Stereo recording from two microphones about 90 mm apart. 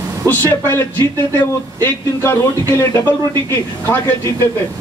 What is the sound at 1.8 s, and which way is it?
A man's voice, 30° left (ahead or behind).